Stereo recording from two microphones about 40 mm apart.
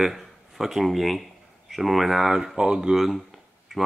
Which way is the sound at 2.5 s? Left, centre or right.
Right.